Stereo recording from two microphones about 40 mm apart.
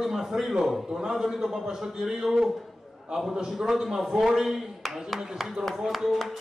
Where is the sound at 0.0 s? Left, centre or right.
Centre.